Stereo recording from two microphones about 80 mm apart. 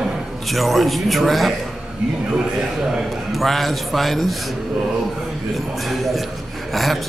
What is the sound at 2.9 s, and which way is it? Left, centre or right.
Speech, centre.